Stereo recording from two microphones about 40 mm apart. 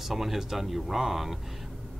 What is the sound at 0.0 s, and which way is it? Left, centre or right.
Speech, centre.